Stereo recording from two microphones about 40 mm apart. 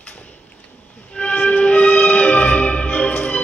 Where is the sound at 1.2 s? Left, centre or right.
Left.